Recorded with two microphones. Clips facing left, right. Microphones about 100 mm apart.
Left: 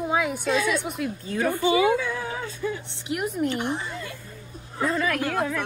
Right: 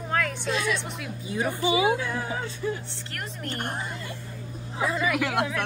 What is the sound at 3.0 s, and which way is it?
Speech, 10° left (ahead or behind).